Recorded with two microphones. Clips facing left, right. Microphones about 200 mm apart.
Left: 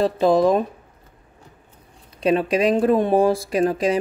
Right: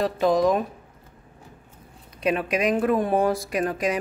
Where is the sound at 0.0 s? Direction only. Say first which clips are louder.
Left 4 dB; 30° left (ahead or behind).